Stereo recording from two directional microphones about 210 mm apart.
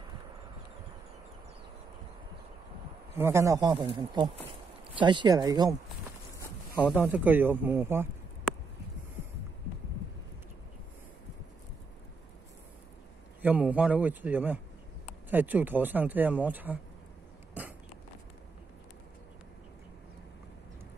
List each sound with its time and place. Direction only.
3.2 s speech: 10° right (ahead or behind)
6.3 s a sound: 15° left (ahead or behind)
6.9 s speech: 5° right (ahead or behind)
13.4 s speech: 5° right (ahead or behind)